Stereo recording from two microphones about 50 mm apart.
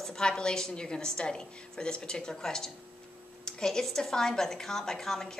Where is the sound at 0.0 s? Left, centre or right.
Centre.